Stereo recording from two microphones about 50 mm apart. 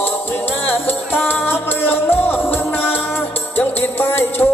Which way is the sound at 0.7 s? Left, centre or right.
Left.